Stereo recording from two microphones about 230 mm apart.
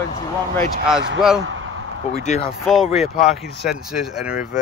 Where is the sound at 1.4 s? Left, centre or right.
Right.